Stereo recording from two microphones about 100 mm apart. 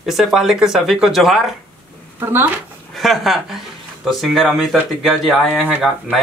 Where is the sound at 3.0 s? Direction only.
Centre (ahead or behind).